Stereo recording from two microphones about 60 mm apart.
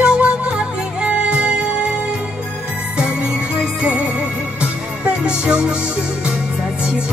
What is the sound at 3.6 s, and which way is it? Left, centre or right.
Music, centre.